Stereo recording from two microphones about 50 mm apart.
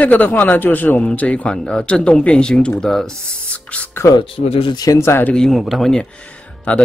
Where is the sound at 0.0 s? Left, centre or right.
Left.